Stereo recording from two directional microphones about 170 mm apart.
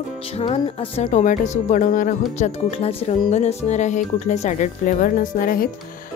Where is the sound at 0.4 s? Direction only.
35° left (ahead or behind).